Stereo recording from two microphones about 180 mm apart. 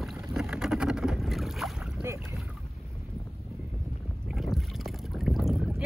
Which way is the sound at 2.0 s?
15° right (ahead or behind).